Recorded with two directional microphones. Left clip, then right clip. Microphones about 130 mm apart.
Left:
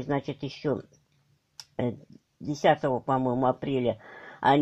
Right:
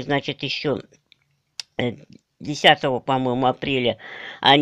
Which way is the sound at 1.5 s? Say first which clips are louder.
Right 6 dB; 10° right (ahead or behind).